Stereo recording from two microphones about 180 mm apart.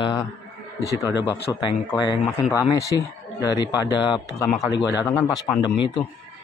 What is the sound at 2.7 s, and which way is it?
Speech, 15° left (ahead or behind).